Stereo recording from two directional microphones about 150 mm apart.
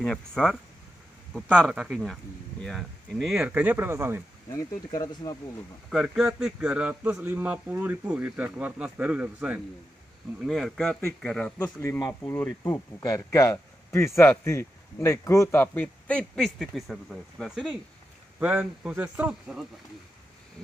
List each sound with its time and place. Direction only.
0.0 s a man's voice: 5° left (ahead or behind); by 4.2 s 15° right (ahead or behind)
4.5 s speech: 25° left (ahead or behind)
5.9 s a man's voice: centre (ahead or behind)
12.6 s speech: 20° left (ahead or behind); by 17.7 s 5° left (ahead or behind)
18.4 s a man's voice: 10° right (ahead or behind)